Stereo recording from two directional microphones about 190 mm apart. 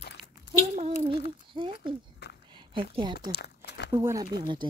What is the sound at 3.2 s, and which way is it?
Crumpling, 60° left (ahead or behind).